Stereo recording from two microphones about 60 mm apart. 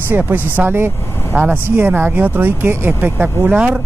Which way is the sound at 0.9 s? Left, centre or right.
Left.